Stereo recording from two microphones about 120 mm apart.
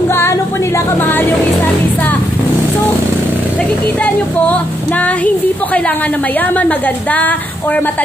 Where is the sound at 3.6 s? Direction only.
10° left (ahead or behind).